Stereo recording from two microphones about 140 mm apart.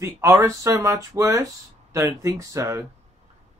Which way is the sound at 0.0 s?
20° right (ahead or behind).